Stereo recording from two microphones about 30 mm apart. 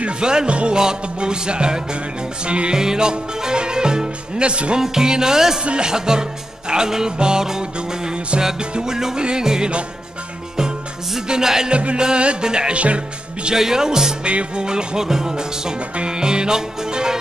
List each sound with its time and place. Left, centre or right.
0.2 s music: right
0.5 s music: right
0.7 s music: right
2.7 s music: right
4.7 s music: centre
8.7 s music: right
11.2 s music: right
11.7 s music: right
12.7 s speech: right
13.6 s music: centre
14.2 s music: right
15.0 s music: centre